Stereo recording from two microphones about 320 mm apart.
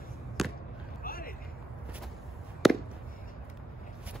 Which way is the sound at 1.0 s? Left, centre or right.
Left.